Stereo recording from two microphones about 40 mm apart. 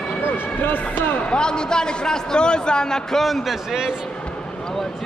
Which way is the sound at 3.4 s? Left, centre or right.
Centre.